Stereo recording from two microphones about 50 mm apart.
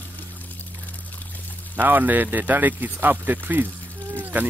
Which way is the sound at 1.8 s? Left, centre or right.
Right.